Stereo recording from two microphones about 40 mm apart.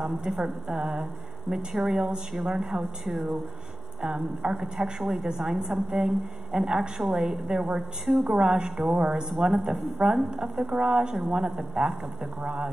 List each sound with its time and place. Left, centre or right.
0.4 s a woman's voice: centre
2.8 s a woman's voice: centre
4.4 s a woman's voice: centre
8.4 s a woman's voice: centre
8.8 s speech: right
9.3 s a woman's voice: centre
11.2 s a woman's voice: right
11.7 s a woman's voice: centre